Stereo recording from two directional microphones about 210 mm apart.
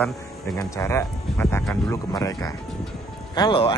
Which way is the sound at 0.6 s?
15° left (ahead or behind).